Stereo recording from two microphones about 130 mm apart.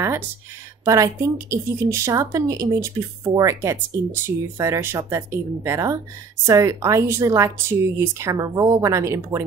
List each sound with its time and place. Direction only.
0.8 s a woman's voice: 25° right (ahead or behind)